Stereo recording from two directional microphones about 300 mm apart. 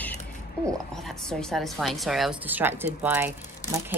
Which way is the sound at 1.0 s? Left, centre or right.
Centre.